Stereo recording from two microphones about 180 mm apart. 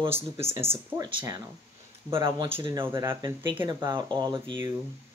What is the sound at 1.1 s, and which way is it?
Speech, 25° right (ahead or behind).